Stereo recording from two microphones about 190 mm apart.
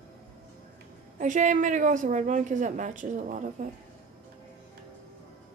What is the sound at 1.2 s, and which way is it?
A woman's voice, 40° right (ahead or behind).